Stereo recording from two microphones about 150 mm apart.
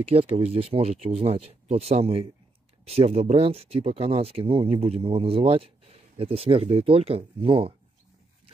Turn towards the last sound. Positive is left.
turn(degrees=-35)  # may be behind; listen again after turning